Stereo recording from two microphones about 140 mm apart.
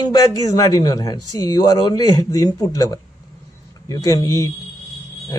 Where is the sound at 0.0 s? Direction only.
25° left (ahead or behind).